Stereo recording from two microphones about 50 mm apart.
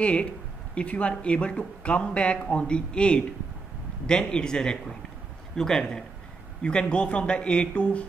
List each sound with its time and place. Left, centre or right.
0.0 s a man's voice: left